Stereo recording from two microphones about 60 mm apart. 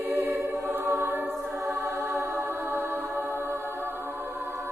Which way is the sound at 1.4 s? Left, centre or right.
Centre.